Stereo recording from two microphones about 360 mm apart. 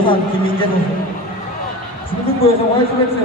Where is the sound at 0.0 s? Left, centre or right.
Centre.